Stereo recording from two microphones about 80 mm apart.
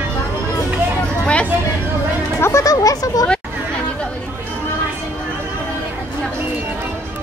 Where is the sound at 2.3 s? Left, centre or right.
Left.